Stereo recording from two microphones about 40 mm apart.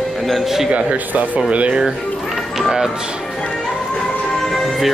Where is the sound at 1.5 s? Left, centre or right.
Right.